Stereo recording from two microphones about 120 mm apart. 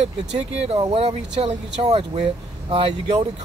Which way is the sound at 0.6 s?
60° right (ahead or behind).